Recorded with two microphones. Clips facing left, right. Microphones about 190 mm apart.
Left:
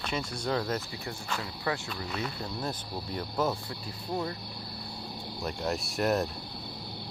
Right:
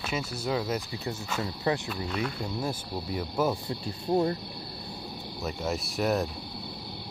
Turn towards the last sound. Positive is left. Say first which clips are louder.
# right 1 dB
turn(degrees=0)  # may be behind; listen again after turning